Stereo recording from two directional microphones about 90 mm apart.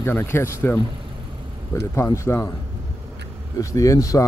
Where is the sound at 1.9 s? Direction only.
30° left (ahead or behind).